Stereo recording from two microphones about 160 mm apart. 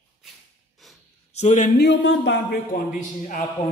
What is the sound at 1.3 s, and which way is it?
Speech, 45° left (ahead or behind).